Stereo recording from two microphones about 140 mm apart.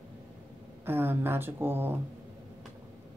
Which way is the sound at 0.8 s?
15° right (ahead or behind).